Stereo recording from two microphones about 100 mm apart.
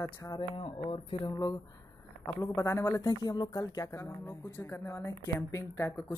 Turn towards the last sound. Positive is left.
turn(degrees=30)  # may be behind; listen again after turning